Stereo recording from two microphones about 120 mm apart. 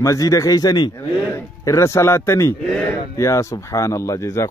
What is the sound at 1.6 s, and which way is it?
Speech, 25° left (ahead or behind).